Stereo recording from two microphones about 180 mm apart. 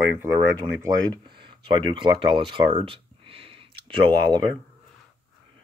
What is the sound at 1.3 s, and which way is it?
Speech, 25° right (ahead or behind).